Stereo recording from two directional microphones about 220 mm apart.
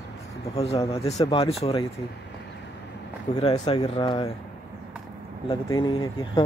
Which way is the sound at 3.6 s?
25° left (ahead or behind).